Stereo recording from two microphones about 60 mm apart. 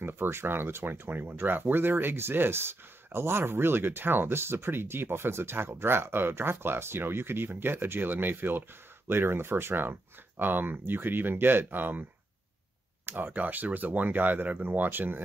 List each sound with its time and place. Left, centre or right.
0.0 s speech: right
13.1 s speech: right